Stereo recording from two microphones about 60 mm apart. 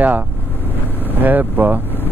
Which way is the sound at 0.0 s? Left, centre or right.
Right.